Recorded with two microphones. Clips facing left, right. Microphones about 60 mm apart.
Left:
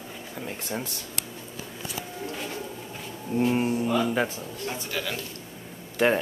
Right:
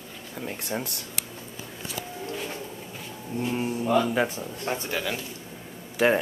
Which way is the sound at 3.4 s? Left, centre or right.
Centre.